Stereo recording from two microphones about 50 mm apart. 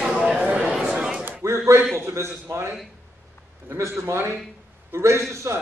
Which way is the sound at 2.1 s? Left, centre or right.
Right.